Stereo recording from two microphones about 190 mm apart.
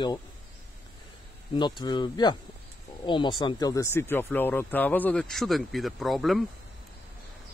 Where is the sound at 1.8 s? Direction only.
25° left (ahead or behind); by 6.4 s centre (ahead or behind).